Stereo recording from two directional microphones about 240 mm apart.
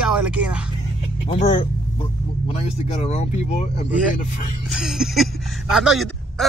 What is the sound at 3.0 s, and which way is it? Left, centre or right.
Speech, left.